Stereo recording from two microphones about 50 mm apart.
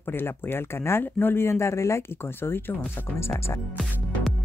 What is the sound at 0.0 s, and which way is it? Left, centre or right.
Speech, left.